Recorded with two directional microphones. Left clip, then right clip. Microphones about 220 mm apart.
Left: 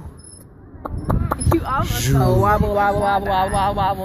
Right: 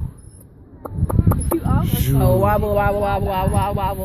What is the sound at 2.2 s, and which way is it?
Speech, 40° right (ahead or behind).